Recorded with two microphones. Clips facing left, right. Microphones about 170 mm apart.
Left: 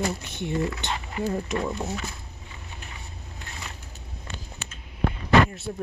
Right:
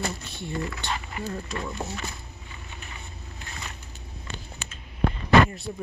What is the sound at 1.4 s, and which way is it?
Speech, 30° left (ahead or behind).